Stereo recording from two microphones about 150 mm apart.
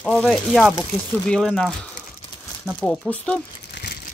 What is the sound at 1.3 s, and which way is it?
A woman's voice, 5° left (ahead or behind).